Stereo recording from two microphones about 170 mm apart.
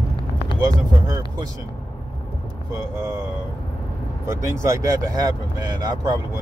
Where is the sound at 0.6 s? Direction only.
25° right (ahead or behind).